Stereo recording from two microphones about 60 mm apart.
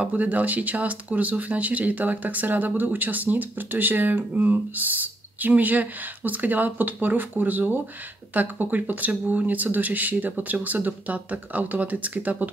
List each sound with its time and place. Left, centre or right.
0.0 s speech: right